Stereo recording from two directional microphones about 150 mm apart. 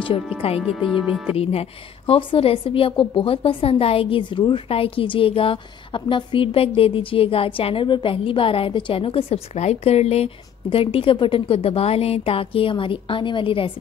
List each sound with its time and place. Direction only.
0.4 s a woman's voice: 40° left (ahead or behind)
0.7 s speech: 10° right (ahead or behind)
1.4 s a woman's voice: 40° left (ahead or behind)